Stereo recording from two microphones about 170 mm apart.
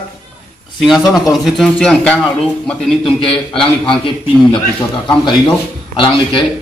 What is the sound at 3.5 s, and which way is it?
Speech, 30° left (ahead or behind).